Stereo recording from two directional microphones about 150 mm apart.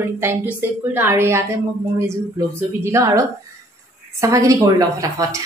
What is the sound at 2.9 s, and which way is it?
A woman's voice, 20° right (ahead or behind).